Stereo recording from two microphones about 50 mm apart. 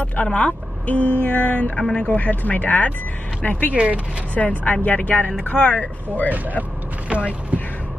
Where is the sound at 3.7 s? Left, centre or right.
Right.